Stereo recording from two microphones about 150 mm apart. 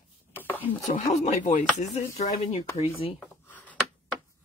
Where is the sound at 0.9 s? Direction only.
55° left (ahead or behind).